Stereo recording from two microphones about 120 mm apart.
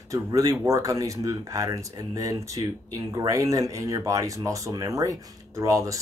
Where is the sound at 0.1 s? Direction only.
30° right (ahead or behind).